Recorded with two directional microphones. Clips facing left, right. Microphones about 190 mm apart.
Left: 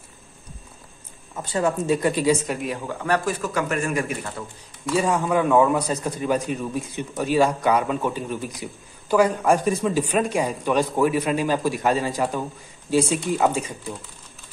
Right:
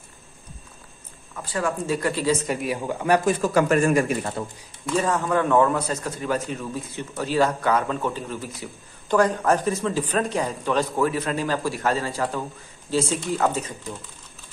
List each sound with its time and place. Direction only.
1.3 s speech: 25° left (ahead or behind)
2.4 s speech: 5° right (ahead or behind)
3.3 s speech: 35° right (ahead or behind)
4.8 s a man's voice: 10° left (ahead or behind)